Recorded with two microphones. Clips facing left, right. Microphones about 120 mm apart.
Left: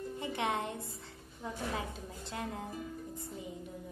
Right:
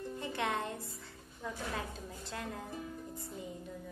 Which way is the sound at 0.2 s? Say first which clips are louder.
Left 1 dB; 20° left (ahead or behind).